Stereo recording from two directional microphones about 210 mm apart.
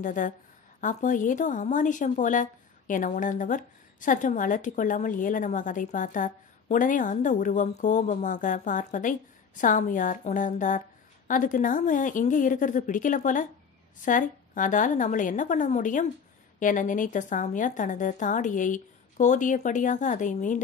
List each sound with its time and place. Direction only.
0.0 s a woman's voice: 40° left (ahead or behind)